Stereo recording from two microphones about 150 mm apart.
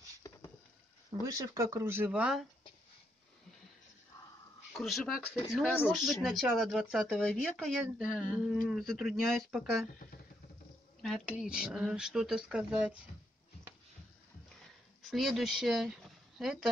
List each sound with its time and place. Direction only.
0.2 s a sound: 20° left (ahead or behind)
1.2 s speech: 25° right (ahead or behind); by 2.4 s 5° right (ahead or behind)
4.7 s speech: centre (ahead or behind)
11.0 s speech: centre (ahead or behind)
15.0 s speech: centre (ahead or behind)